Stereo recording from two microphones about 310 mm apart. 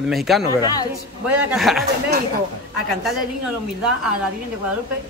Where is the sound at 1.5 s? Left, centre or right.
Centre.